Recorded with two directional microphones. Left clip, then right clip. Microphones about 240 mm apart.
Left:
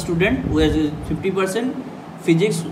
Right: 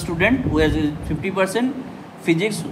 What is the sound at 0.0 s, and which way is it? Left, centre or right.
A man's voice, right.